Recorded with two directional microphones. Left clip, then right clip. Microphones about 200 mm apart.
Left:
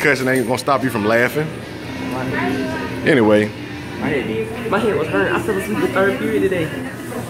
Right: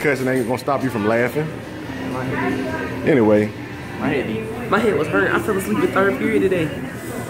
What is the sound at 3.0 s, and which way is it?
Speech, 5° right (ahead or behind).